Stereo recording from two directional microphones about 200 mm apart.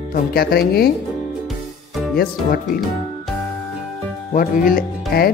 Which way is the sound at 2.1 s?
45° left (ahead or behind).